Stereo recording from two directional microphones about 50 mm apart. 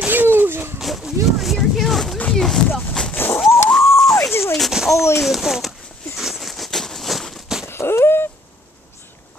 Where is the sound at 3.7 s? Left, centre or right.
Centre.